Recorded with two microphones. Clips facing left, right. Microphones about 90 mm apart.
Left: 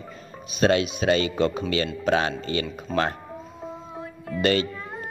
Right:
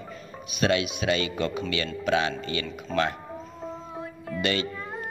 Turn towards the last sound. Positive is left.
turn(degrees=0)  # may be behind; listen again after turning